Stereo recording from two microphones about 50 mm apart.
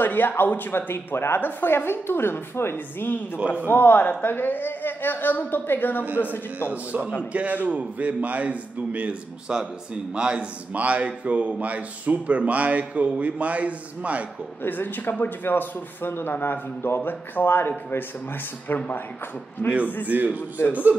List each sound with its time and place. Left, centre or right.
0.0 s speech: left
3.6 s a woman's voice: left
6.7 s a man's voice: right
10.7 s speech: right
14.6 s speech: left
19.6 s a man's voice: left
20.1 s a man's voice: right